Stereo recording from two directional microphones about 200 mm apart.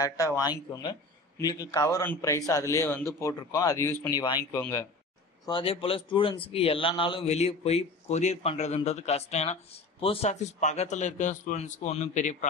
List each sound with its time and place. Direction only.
0.0 s a man's voice: 15° left (ahead or behind)
5.4 s speech: 25° left (ahead or behind)